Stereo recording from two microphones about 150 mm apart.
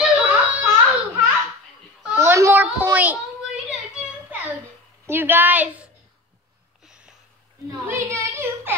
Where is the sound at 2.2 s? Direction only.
20° right (ahead or behind).